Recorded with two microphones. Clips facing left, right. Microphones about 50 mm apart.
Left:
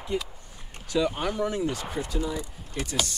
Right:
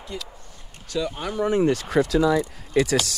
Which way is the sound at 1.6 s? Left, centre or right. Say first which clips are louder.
Right 9 dB; right.